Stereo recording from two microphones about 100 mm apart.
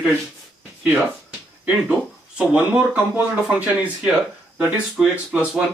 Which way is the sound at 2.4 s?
15° right (ahead or behind).